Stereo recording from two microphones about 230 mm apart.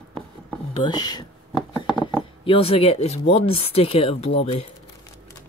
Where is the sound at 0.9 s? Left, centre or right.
Centre.